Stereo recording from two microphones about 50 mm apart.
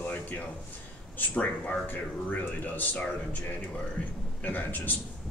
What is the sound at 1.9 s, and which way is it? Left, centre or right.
Speech, left.